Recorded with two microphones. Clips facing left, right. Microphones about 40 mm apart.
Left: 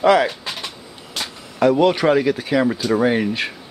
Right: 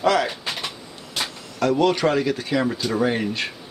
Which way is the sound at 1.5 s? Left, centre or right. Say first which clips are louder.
Left 4 dB; centre.